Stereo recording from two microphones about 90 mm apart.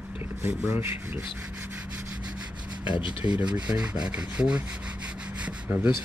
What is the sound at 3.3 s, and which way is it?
Rub, 10° right (ahead or behind).